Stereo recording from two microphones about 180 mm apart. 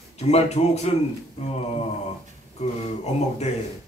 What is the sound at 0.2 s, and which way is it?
Speech, 35° left (ahead or behind).